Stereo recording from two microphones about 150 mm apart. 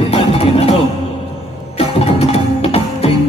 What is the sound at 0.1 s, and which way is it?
Music, 40° left (ahead or behind).